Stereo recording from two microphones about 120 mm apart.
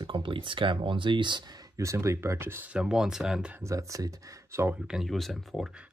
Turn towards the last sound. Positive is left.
turn(degrees=0)  # may be behind; listen again after turning